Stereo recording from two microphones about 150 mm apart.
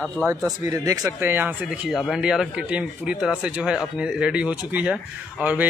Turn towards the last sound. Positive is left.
turn(degrees=-10)  # may be behind; listen again after turning